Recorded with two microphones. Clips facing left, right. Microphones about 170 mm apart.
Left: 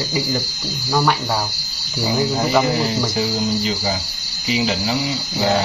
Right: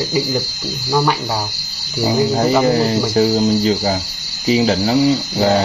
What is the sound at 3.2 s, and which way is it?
Cricket, 45° right (ahead or behind).